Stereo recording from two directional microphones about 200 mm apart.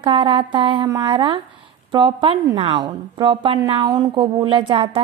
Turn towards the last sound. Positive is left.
turn(degrees=-25)  # may be behind; listen again after turning